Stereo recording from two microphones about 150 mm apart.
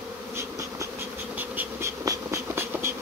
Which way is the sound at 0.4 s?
20° right (ahead or behind).